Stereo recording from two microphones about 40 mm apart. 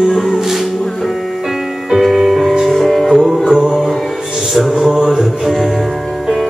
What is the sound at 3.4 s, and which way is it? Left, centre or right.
Music, centre.